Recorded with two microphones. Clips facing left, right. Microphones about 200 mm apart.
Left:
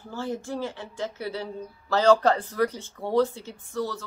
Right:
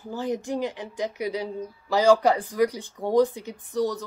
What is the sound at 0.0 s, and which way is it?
Speech, 15° right (ahead or behind).